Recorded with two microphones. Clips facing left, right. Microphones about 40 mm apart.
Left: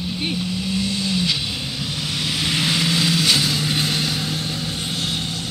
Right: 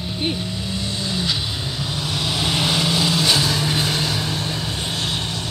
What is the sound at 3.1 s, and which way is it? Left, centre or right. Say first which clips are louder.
Vehicle: even; right.